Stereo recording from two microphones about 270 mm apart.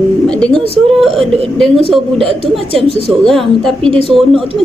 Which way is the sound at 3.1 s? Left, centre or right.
Centre.